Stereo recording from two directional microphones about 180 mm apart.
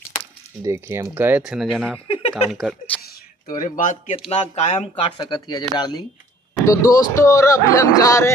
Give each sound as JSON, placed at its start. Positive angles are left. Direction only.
{"t": 0.6, "sound": "speech", "side_deg": -15}
{"t": 2.0, "sound": "a sound", "side_deg": 30}
{"t": 2.5, "sound": "speech", "side_deg": 0}
{"t": 3.4, "sound": "speech", "side_deg": 45}
{"t": 5.0, "sound": "speech", "side_deg": 25}